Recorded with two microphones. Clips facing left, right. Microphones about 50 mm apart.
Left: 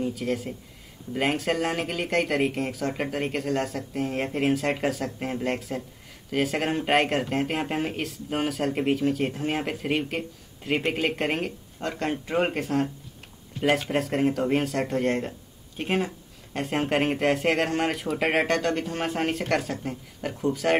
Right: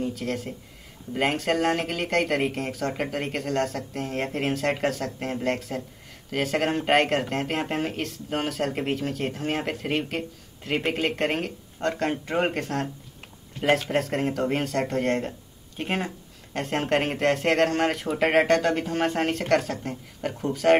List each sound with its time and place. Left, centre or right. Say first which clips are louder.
0.0 s speech: left 1 dB; centre